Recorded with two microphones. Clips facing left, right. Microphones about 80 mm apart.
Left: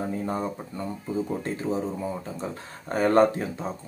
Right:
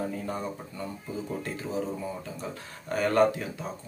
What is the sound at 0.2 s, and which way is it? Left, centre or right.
Speech, left.